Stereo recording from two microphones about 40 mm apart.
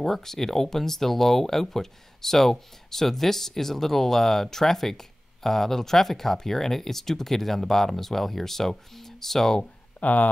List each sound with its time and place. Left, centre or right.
0.0 s speech: centre
9.9 s speech: left